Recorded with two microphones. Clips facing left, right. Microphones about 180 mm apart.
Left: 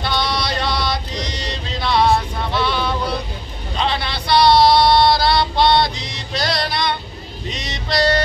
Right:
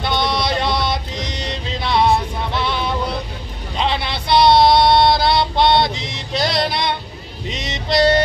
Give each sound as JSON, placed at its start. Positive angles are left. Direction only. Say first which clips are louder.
{"t": 0.0, "sound": "music", "louder": "right 2 dB", "side_deg": -20}
{"t": 3.7, "sound": "a sound", "louder": "right 1 dB", "side_deg": -20}
{"t": 7.4, "sound": "music", "louder": "right 3 dB", "side_deg": -20}